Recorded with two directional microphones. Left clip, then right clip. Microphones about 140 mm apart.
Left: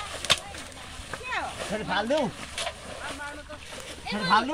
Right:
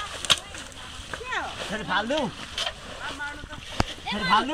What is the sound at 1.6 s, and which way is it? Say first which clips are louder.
Speech: right 2 dB; 5° left (ahead or behind).